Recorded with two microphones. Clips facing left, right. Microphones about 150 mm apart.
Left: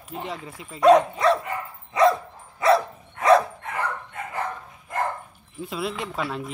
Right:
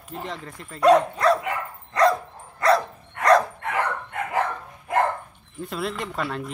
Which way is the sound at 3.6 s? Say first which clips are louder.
Right 3 dB; 70° right (ahead or behind).